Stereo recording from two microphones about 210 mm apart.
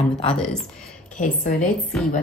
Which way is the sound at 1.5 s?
Centre (ahead or behind).